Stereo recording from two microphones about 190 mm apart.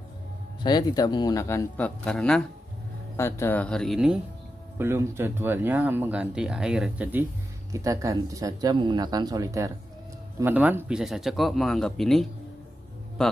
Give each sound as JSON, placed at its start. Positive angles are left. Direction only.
{"t": 0.7, "sound": "speech", "side_deg": 20}
{"t": 2.0, "sound": "speech", "side_deg": 5}
{"t": 3.2, "sound": "speech", "side_deg": 15}
{"t": 4.7, "sound": "speech", "side_deg": -10}